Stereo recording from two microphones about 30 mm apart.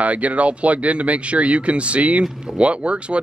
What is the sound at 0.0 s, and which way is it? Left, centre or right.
A man's voice, right.